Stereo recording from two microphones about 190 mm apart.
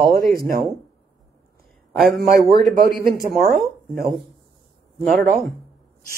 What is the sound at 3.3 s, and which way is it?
Speech, centre (ahead or behind).